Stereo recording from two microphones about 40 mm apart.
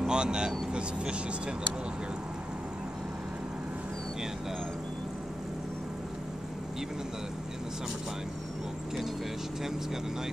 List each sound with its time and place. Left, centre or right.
0.0 s speech: right